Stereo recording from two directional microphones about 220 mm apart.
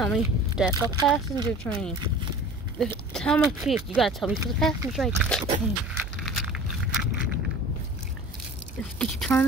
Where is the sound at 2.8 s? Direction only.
5° left (ahead or behind).